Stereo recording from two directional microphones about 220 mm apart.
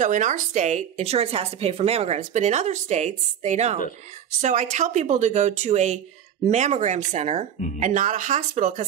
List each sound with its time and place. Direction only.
0.0 s a woman's voice: 35° right (ahead or behind)